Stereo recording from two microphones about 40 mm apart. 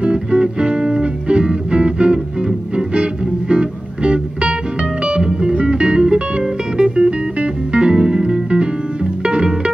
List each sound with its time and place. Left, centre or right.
0.0 s music: right